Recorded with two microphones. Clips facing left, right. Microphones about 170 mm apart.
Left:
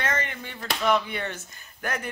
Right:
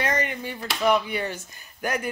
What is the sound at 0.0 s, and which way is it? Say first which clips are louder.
Speech: right 4 dB; 15° right (ahead or behind).